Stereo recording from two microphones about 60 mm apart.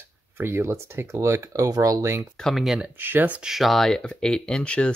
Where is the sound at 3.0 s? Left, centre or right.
Right.